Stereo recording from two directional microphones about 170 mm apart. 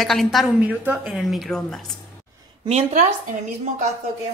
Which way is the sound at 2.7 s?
45° right (ahead or behind).